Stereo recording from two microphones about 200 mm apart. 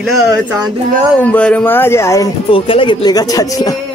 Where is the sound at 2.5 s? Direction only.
25° left (ahead or behind).